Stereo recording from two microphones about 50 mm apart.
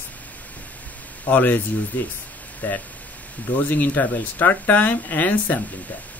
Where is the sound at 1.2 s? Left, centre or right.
Left.